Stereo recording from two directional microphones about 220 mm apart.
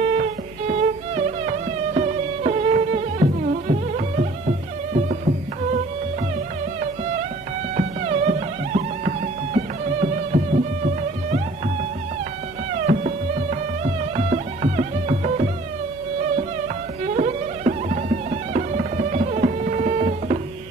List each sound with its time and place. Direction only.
0.0 s music: 30° right (ahead or behind)
7.7 s music: 30° right (ahead or behind)
12.7 s music: 35° right (ahead or behind)
17.0 s music: 35° right (ahead or behind)